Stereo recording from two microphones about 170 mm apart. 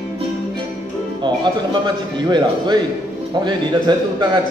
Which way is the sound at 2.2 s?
25° right (ahead or behind).